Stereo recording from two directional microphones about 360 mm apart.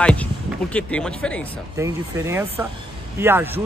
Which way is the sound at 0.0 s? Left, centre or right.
Centre.